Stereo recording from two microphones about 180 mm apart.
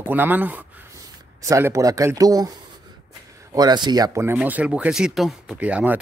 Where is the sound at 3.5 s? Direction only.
25° right (ahead or behind).